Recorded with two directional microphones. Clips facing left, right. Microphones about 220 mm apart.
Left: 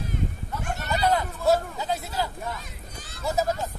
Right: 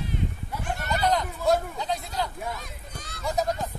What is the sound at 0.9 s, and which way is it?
Speech, 5° left (ahead or behind).